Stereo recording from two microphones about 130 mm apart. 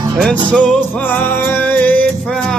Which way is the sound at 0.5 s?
10° left (ahead or behind).